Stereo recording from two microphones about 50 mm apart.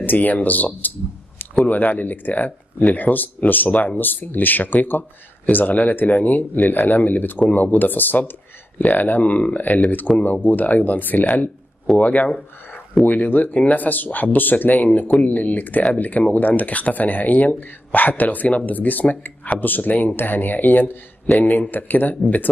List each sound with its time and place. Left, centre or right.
0.0 s speech: left
6.6 s speech: left
6.9 s speech: left